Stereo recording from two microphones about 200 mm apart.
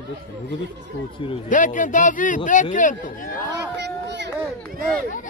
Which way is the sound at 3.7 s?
60° right (ahead or behind).